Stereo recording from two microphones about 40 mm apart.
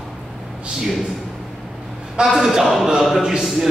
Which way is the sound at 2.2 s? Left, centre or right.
Centre.